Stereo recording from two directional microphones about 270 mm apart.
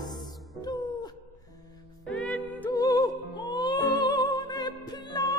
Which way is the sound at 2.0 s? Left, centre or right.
Centre.